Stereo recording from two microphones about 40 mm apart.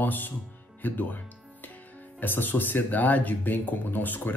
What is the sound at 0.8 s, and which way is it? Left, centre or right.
Music, left.